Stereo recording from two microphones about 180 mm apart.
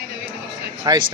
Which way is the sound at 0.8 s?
20° right (ahead or behind).